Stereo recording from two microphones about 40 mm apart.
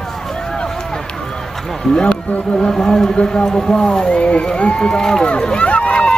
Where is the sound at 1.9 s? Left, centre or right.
Left.